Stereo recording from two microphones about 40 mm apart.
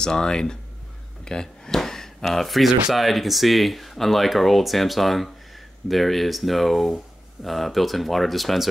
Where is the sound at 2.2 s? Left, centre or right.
Centre.